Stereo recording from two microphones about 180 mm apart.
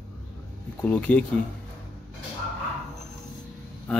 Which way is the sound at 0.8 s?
10° left (ahead or behind).